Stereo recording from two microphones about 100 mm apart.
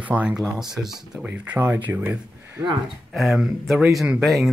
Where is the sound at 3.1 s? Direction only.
Centre (ahead or behind).